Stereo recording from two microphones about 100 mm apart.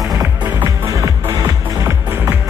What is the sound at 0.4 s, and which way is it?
Music, 20° right (ahead or behind).